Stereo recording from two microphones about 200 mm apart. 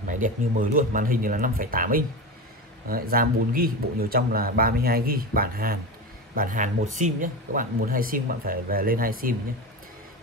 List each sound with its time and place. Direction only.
0.0 s speech: 40° right (ahead or behind)